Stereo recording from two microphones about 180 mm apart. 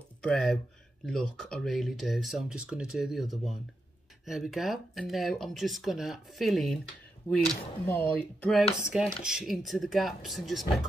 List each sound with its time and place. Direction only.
0.2 s speech: 5° left (ahead or behind)
4.3 s speech: centre (ahead or behind)